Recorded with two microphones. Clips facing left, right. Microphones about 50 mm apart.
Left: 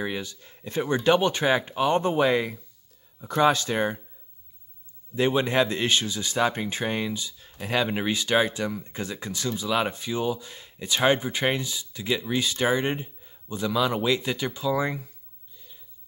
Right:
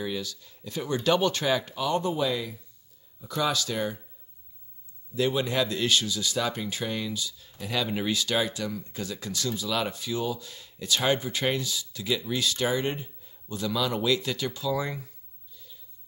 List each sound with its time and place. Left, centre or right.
0.0 s speech: left
5.1 s speech: left
15.5 s a sound: left